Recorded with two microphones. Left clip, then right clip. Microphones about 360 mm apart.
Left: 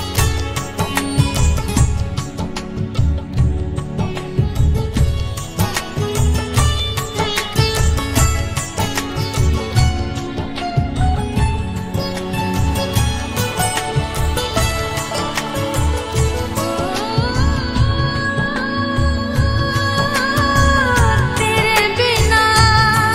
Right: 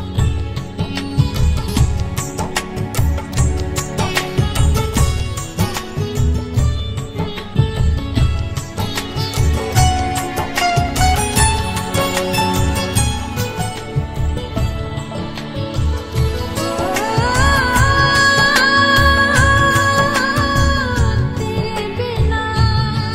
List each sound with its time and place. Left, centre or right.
7.2 s music: left
10.5 s music: right
16.9 s music: centre
17.3 s music: centre
17.9 s music: right
19.3 s music of bollywood: centre
21.5 s music: left